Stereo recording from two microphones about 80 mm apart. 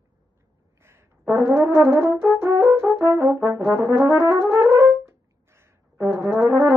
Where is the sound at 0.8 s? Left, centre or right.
Right.